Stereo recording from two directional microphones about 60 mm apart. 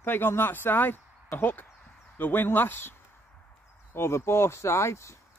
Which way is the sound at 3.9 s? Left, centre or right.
Left.